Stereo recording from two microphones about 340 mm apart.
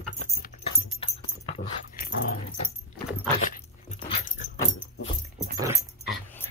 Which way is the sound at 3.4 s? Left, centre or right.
Left.